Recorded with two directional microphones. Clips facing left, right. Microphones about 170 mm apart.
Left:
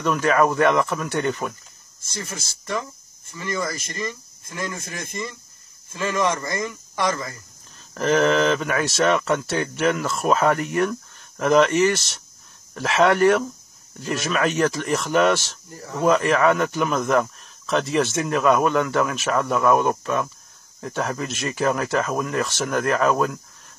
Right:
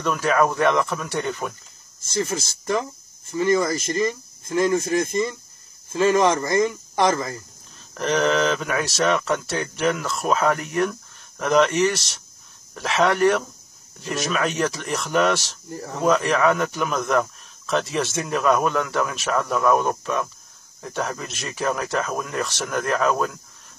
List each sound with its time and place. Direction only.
0.0 s speech: centre (ahead or behind)
2.0 s speech: 25° right (ahead or behind)
5.9 s speech: 25° right (ahead or behind)
8.0 s speech: centre (ahead or behind)